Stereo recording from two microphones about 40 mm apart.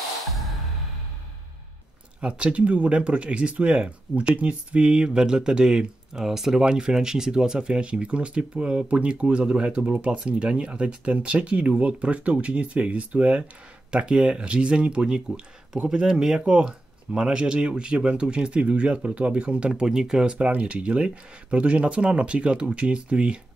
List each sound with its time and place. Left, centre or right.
2.2 s speech: right
20.2 s speech: right